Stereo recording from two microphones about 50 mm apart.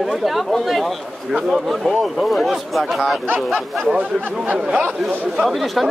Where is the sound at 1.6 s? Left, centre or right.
Centre.